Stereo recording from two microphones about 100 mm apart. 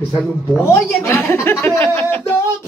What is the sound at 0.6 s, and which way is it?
Speech, 25° left (ahead or behind).